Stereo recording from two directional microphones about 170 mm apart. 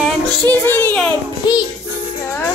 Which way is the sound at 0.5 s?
10° left (ahead or behind).